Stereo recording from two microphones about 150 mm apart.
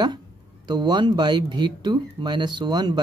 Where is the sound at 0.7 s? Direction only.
30° right (ahead or behind).